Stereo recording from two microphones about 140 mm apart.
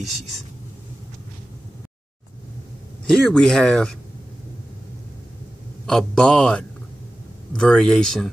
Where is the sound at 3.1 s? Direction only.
5° left (ahead or behind).